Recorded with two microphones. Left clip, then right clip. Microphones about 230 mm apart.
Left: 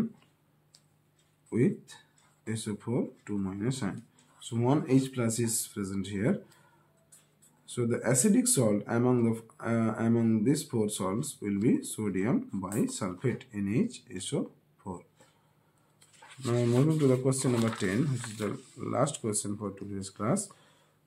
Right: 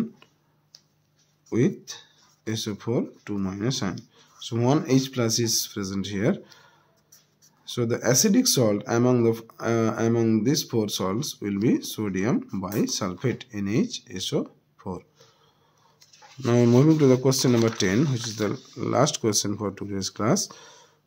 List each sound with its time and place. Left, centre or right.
1.5 s speech: right
7.7 s speech: right
16.4 s speech: right